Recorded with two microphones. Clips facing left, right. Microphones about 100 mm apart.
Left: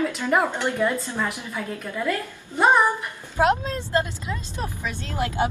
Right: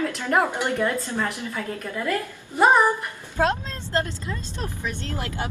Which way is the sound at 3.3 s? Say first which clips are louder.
Left 3 dB; 15° left (ahead or behind).